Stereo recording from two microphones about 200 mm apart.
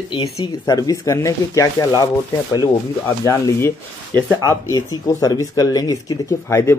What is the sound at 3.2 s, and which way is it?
Speech, 15° left (ahead or behind).